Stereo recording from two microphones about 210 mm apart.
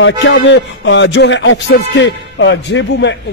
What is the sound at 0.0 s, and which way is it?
Speech, 60° left (ahead or behind).